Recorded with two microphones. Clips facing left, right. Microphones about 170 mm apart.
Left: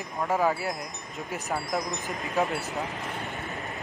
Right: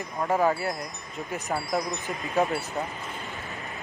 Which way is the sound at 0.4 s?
Centre (ahead or behind).